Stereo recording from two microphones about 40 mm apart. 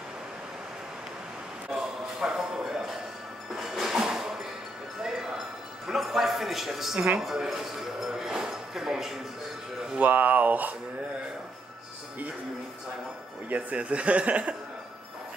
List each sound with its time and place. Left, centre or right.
1.7 s speech: centre
3.5 s music: centre
5.9 s a woman's voice: centre
9.9 s speech: right
13.5 s speech: right